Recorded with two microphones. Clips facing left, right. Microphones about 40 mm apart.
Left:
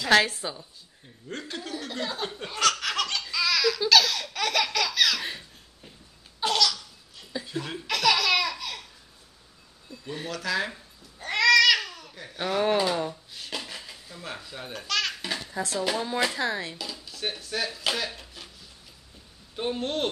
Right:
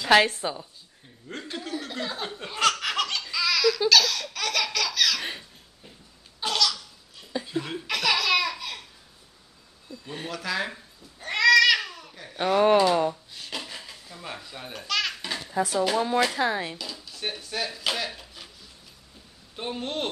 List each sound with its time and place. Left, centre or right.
0.2 s a woman's voice: centre
2.8 s laughter: centre
6.4 s laughter: centre
6.7 s laughter: centre
10.0 s cat: centre
12.9 s a woman's voice: centre
13.3 s a sound: centre
13.7 s baby laughter: centre
16.2 s speech: centre
17.0 s speech: centre
18.0 s a sound: centre
19.5 s laughter: centre